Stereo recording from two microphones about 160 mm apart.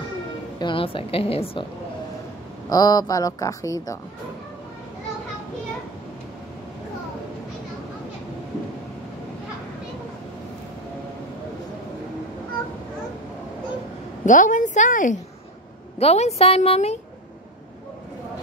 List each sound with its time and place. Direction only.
0.6 s a woman's voice: 30° left (ahead or behind)
2.7 s speech: 25° left (ahead or behind)
14.2 s a woman's voice: 55° left (ahead or behind)
16.0 s a woman's voice: 40° left (ahead or behind)